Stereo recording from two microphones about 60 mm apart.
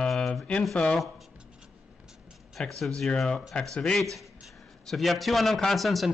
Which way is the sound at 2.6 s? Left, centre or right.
Centre.